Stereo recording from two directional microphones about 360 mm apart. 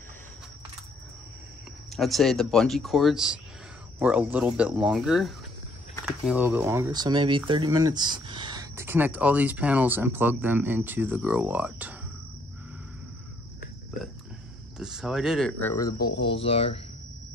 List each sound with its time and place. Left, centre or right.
1.9 s speech: centre
14.8 s speech: centre